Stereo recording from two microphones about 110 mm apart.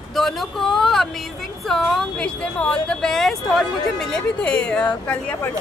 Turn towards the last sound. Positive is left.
turn(degrees=10)  # may be behind; listen again after turning